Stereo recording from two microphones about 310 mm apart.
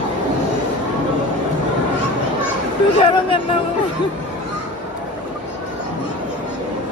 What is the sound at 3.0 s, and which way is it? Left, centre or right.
Speech, centre.